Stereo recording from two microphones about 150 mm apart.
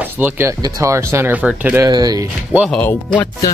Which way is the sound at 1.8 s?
25° right (ahead or behind).